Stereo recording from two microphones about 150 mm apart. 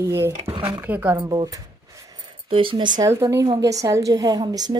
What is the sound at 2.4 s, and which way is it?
A woman's voice, 35° right (ahead or behind).